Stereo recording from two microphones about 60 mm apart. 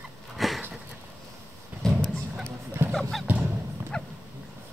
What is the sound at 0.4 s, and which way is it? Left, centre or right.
Sniff, centre.